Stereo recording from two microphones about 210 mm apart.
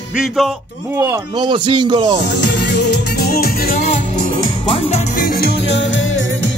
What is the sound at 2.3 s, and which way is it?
Music, 55° left (ahead or behind).